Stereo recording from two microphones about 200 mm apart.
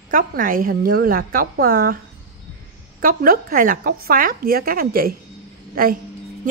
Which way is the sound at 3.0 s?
45° right (ahead or behind).